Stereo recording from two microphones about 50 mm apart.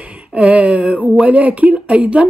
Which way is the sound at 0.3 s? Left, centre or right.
Right.